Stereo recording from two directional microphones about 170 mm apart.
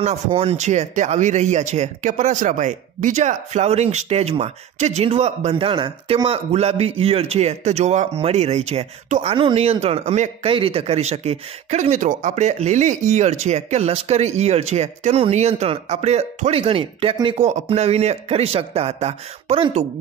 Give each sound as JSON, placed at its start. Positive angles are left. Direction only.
{"t": 0.0, "sound": "speech", "side_deg": -40}